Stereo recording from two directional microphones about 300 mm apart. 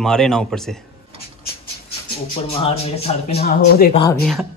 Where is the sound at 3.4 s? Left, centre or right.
Left.